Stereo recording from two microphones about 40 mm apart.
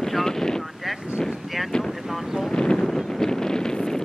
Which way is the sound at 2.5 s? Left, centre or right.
Left.